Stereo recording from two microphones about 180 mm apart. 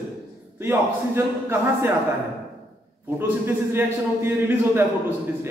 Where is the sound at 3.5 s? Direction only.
10° right (ahead or behind).